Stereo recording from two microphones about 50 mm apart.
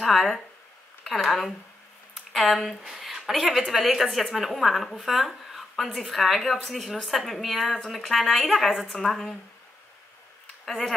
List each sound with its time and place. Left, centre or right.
0.0 s a woman's voice: centre
10.6 s speech: centre